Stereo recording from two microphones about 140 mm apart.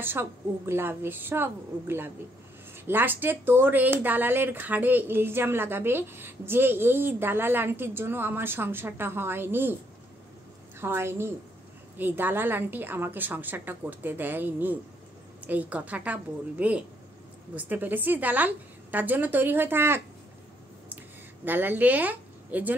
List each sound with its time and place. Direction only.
0.0 s speech: 15° right (ahead or behind)
10.8 s speech: 15° right (ahead or behind)
21.5 s speech: 15° right (ahead or behind)